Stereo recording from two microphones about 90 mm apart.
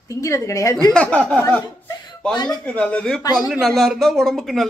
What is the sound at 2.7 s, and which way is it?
Speech, 15° left (ahead or behind).